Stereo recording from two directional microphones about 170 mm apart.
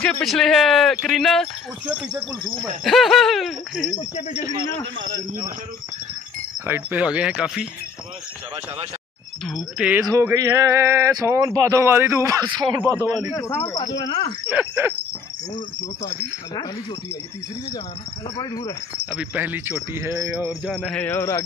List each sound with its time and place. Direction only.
0.0 s speech: 5° left (ahead or behind)
4.0 s speech: 40° left (ahead or behind)
6.6 s speech: 10° right (ahead or behind)
9.5 s speech: 5° right (ahead or behind)
10.0 s speech: 20° right (ahead or behind)
13.3 s speech: 15° left (ahead or behind)
14.5 s speech: 10° right (ahead or behind)
18.4 s speech: 20° left (ahead or behind)
19.0 s speech: 10° right (ahead or behind)
20.7 s speech: 5° left (ahead or behind)